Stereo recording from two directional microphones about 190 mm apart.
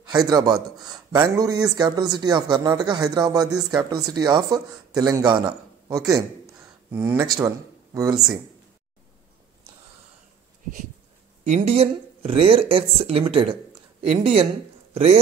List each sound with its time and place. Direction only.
0.0 s speech: 20° right (ahead or behind)
0.6 s speech: centre (ahead or behind)
1.1 s a man's voice: 20° right (ahead or behind)
11.4 s a man's voice: 35° right (ahead or behind)